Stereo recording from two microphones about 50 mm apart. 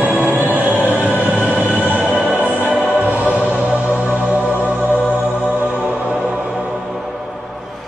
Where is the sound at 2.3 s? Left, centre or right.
Right.